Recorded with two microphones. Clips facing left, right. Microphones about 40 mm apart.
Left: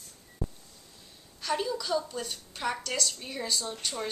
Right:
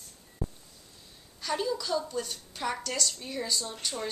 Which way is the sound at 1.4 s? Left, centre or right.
Centre.